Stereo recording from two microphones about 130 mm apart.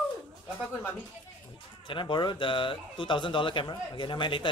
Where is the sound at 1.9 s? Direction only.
40° left (ahead or behind).